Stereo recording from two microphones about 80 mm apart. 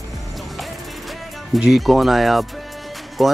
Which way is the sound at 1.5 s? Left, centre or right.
Centre.